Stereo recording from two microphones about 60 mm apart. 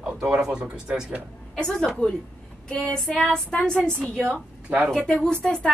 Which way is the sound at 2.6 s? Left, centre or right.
Centre.